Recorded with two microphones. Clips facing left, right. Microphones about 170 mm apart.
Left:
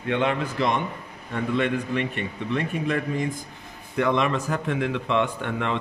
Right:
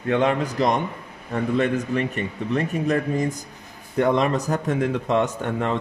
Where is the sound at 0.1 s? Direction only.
40° right (ahead or behind).